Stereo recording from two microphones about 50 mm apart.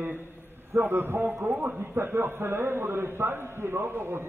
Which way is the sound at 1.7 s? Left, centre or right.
Right.